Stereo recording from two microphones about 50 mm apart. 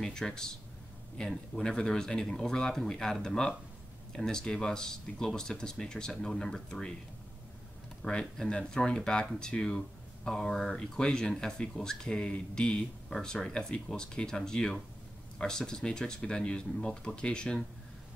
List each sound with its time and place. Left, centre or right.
0.0 s speech: centre
8.1 s speech: centre